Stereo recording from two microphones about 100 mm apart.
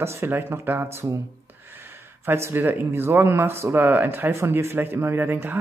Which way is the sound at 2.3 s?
25° right (ahead or behind).